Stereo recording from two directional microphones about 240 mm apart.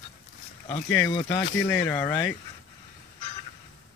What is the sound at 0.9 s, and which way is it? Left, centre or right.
Speech, centre.